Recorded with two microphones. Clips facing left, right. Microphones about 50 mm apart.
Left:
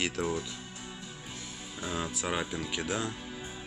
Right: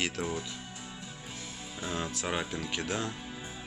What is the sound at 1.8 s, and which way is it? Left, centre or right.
Speech, centre.